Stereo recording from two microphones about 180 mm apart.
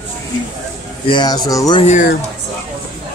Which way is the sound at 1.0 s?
25° left (ahead or behind).